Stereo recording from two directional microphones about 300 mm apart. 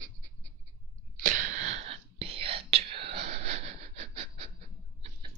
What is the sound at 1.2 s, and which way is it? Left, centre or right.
Whispering, right.